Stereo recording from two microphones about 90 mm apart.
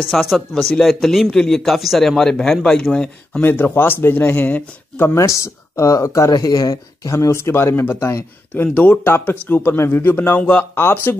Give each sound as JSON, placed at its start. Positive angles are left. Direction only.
{"t": 0.1, "sound": "a man's voice", "side_deg": 0}
{"t": 3.4, "sound": "speech", "side_deg": 25}
{"t": 5.1, "sound": "speech", "side_deg": 35}
{"t": 8.7, "sound": "speech", "side_deg": 20}